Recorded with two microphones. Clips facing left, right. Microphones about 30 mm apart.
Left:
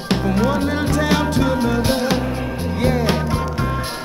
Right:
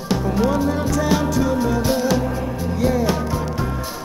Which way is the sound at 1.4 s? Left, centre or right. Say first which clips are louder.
Left 1 dB; left.